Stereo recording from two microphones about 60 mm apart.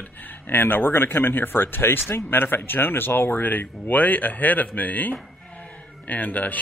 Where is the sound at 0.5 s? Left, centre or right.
Left.